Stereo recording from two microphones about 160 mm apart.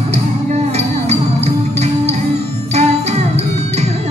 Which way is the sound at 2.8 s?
40° right (ahead or behind).